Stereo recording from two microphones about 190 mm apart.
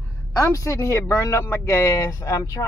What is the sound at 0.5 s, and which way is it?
Speech, 15° left (ahead or behind).